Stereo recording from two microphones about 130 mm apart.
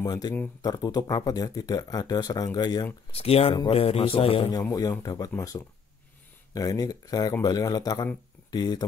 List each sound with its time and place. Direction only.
0.0 s speech: 30° left (ahead or behind)
3.1 s a man's voice: 50° left (ahead or behind)
4.5 s speech: 30° left (ahead or behind)
6.5 s speech: 25° left (ahead or behind)